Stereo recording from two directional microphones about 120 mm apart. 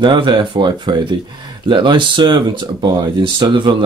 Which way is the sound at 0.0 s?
40° right (ahead or behind).